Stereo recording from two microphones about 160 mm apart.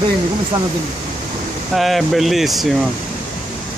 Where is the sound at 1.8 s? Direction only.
Centre (ahead or behind).